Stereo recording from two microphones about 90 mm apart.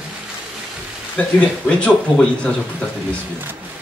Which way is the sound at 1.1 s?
15° left (ahead or behind).